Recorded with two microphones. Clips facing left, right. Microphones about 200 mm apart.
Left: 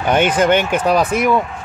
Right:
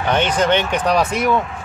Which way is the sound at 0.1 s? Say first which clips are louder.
Left 3 dB; 10° left (ahead or behind).